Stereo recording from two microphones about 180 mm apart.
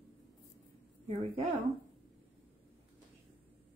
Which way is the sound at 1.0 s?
30° right (ahead or behind).